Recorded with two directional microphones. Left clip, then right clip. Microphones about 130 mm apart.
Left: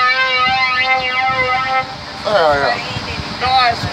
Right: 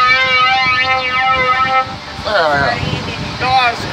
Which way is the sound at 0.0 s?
30° right (ahead or behind).